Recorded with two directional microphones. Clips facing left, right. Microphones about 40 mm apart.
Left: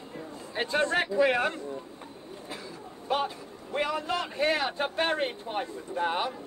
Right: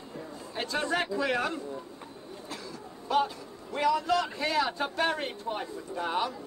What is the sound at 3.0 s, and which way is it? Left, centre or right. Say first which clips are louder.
A man's voice: right 2 dB; left.